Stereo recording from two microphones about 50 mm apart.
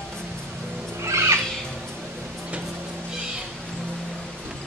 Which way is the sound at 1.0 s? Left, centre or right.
Right.